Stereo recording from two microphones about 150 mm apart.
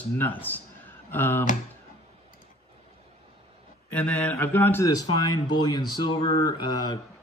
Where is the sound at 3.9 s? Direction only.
10° left (ahead or behind).